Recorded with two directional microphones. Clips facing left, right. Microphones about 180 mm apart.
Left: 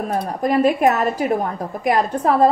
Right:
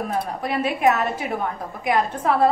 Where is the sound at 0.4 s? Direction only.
40° left (ahead or behind).